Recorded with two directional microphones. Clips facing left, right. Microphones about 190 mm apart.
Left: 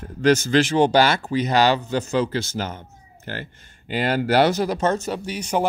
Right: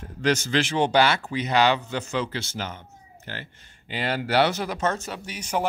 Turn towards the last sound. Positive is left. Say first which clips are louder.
# left 5 dB
turn(degrees=30)  # may be behind; listen again after turning